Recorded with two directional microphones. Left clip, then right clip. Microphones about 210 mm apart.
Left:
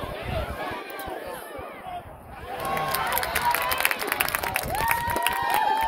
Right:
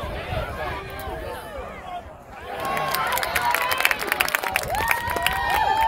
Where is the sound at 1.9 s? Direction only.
45° right (ahead or behind).